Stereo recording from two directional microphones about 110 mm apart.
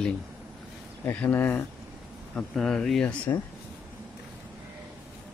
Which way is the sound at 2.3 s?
5° left (ahead or behind).